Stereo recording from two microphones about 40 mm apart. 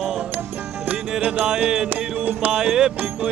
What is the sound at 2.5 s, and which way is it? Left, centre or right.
Music, right.